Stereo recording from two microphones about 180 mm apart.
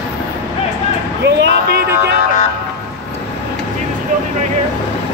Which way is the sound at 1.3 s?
65° right (ahead or behind).